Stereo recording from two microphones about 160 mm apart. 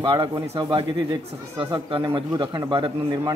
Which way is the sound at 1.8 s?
30° right (ahead or behind).